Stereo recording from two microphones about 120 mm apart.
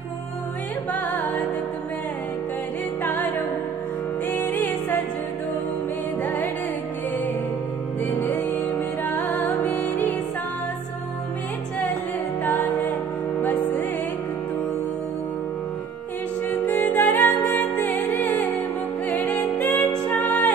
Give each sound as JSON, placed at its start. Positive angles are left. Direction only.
{"t": 3.0, "sound": "music", "side_deg": 15}
{"t": 4.3, "sound": "music", "side_deg": 15}
{"t": 6.2, "sound": "music", "side_deg": 15}
{"t": 9.0, "sound": "music", "side_deg": 15}
{"t": 12.4, "sound": "music", "side_deg": 15}
{"t": 16.4, "sound": "music", "side_deg": 15}